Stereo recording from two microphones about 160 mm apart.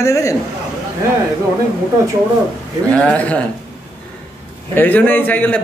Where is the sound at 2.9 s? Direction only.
5° left (ahead or behind).